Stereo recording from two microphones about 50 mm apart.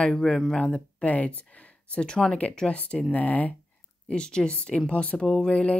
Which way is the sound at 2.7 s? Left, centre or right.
Left.